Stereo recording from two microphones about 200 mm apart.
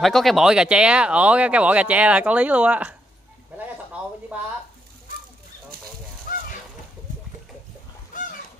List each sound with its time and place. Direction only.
0.0 s speech: centre (ahead or behind)
4.3 s speech: 5° right (ahead or behind)
6.3 s goose: 45° left (ahead or behind)
8.1 s fowl: 40° left (ahead or behind)